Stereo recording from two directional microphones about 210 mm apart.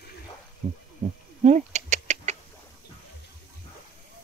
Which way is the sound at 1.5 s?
35° right (ahead or behind).